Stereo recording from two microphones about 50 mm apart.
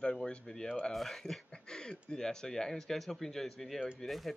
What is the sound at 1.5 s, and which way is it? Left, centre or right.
Speech, centre.